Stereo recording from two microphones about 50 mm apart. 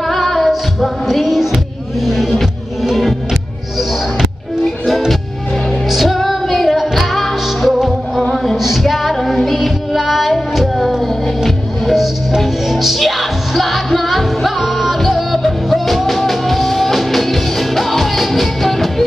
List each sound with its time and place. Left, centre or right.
0.0 s singing: centre
2.0 s music: centre
4.8 s music: centre